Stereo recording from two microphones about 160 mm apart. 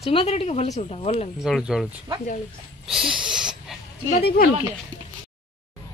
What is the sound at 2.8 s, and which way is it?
Wheeze, 5° right (ahead or behind).